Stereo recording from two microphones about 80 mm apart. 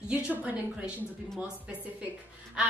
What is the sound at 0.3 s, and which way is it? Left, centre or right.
Speech, right.